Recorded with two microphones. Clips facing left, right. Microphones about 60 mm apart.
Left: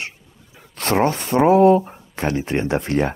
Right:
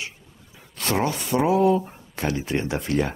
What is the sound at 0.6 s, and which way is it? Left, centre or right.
Speech, left.